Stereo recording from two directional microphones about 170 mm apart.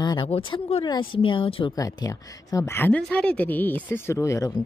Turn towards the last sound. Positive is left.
turn(degrees=20)  # may be behind; listen again after turning